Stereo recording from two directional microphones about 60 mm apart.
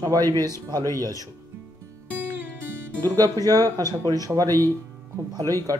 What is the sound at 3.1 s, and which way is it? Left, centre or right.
Speech, right.